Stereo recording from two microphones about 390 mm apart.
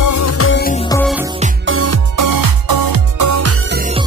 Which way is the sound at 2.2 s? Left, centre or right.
Right.